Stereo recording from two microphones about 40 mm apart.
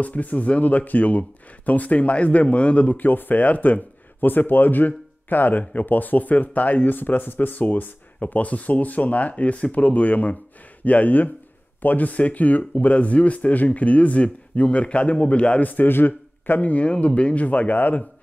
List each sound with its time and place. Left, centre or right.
0.0 s speech: left
2.9 s speech: left
3.3 s speech: left